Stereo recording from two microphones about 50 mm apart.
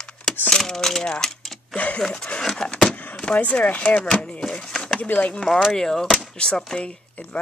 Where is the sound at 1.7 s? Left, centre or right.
Left.